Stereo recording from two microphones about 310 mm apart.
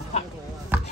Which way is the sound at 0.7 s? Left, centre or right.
Centre.